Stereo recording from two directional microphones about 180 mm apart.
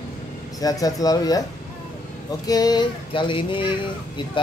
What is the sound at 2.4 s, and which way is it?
Speech, 20° left (ahead or behind).